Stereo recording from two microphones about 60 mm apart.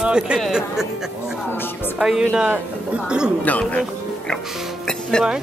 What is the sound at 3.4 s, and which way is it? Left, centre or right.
Speech, left.